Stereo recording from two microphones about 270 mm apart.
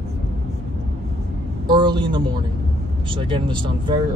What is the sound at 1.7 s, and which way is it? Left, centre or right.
Speech, centre.